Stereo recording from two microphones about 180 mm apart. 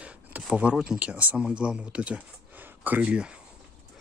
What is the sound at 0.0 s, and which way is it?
Speech, 5° right (ahead or behind).